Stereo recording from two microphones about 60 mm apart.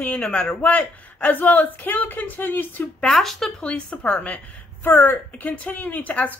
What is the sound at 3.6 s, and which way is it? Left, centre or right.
A woman's voice, left.